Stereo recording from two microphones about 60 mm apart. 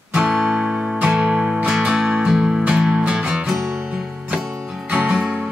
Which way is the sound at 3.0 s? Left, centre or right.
Centre.